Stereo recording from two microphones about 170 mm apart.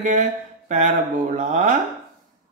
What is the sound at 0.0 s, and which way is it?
Speech, 45° right (ahead or behind).